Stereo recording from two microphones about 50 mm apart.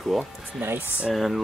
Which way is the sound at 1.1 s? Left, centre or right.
Centre.